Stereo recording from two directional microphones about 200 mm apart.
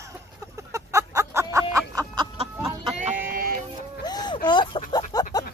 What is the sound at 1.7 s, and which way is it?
Music, 15° right (ahead or behind).